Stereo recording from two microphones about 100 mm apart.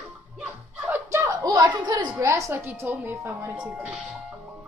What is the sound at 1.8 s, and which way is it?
Speech, 50° right (ahead or behind).